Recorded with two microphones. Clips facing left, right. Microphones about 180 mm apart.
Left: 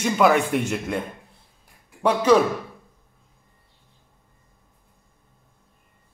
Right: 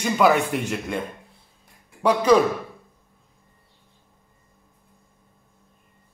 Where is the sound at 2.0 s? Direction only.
5° left (ahead or behind).